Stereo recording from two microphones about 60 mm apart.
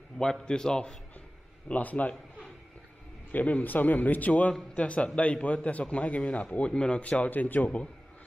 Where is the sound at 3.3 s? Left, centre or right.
Left.